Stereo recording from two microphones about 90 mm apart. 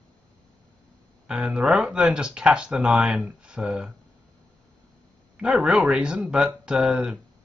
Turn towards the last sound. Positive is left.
turn(degrees=-10)  # may be behind; listen again after turning